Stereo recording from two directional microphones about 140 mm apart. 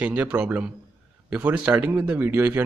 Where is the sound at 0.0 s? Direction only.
10° right (ahead or behind).